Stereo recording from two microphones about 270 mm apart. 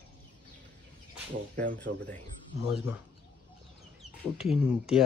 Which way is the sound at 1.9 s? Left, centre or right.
Right.